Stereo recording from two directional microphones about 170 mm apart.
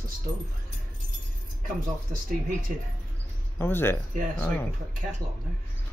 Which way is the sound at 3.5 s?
15° left (ahead or behind).